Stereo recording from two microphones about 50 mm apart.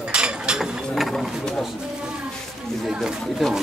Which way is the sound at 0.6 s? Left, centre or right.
Centre.